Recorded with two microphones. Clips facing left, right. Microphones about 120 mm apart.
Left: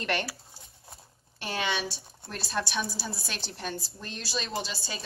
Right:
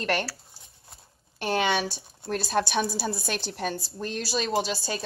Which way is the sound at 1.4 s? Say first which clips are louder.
Right 6 dB; 50° right (ahead or behind).